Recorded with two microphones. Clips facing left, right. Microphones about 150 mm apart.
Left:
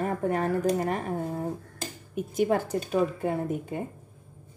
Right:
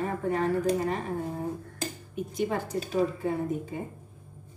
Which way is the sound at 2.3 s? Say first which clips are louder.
Left 5 dB; 50° left (ahead or behind).